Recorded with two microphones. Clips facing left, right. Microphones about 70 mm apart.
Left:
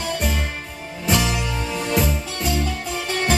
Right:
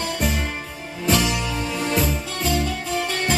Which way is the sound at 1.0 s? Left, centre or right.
Centre.